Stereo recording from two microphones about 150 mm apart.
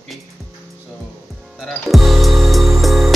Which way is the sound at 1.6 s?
Centre (ahead or behind).